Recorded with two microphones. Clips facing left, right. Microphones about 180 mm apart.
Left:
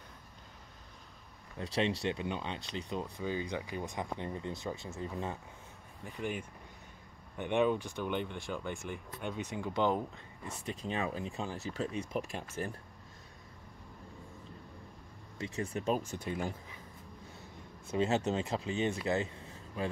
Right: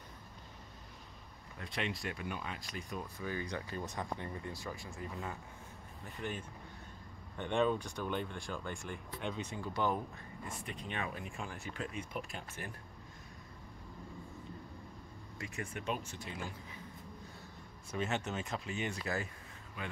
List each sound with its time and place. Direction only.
1.6 s speech: 30° left (ahead or behind)
7.3 s speech: 10° left (ahead or behind)
8.5 s speech: 5° left (ahead or behind); by 12.4 s 30° left (ahead or behind)
15.4 s speech: 30° left (ahead or behind)
16.2 s speech: 50° left (ahead or behind)
17.9 s speech: 30° left (ahead or behind)